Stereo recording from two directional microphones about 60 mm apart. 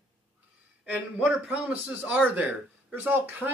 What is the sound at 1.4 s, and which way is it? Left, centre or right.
Speech, right.